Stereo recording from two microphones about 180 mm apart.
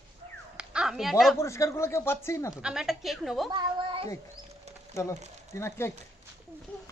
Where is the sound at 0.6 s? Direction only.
5° right (ahead or behind).